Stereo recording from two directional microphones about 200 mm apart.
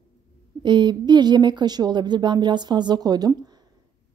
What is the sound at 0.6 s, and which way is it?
A woman's voice, 25° right (ahead or behind).